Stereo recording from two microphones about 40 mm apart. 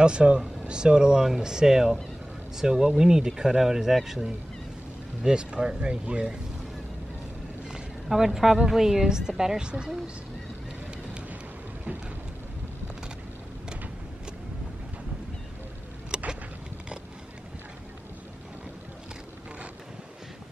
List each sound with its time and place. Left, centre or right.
0.0 s speech: right
5.4 s speech: right
7.6 s a woman's voice: centre
16.1 s vehicle: centre